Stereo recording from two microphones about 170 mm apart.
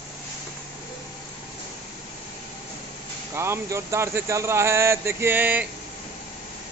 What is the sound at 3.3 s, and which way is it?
Speech, 15° right (ahead or behind).